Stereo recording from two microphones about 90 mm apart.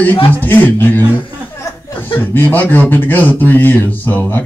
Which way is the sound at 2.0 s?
20° left (ahead or behind).